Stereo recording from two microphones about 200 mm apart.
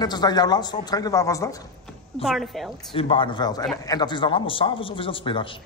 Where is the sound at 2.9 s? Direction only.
25° left (ahead or behind).